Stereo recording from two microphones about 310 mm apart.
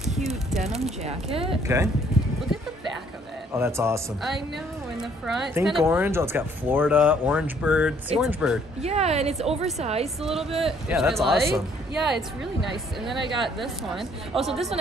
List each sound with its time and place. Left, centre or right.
0.1 s speech: centre
1.0 s speech: centre
3.5 s speech: centre
8.8 s a woman's voice: centre
10.6 s speech: centre